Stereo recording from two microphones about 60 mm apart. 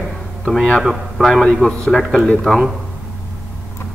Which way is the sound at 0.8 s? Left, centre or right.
Centre.